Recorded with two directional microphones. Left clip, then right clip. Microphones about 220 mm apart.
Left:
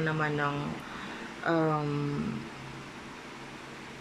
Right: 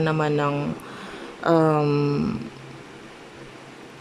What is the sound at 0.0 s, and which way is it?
Speech, 20° right (ahead or behind).